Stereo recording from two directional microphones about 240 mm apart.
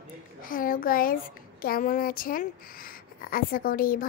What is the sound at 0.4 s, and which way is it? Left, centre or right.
Speech, left.